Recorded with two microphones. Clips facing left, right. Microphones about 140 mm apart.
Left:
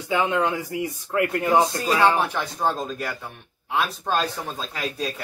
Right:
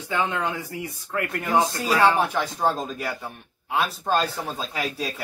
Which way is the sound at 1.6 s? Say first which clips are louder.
Right 2 dB; 5° right (ahead or behind).